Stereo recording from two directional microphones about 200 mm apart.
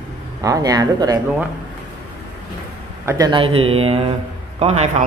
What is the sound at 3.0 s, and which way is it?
A man's voice, 15° right (ahead or behind).